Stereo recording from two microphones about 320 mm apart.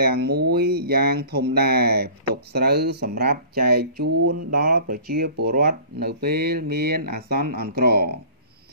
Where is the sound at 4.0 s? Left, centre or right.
Right.